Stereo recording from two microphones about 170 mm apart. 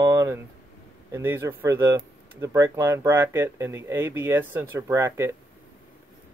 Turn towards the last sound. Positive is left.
turn(degrees=-15)  # may be behind; listen again after turning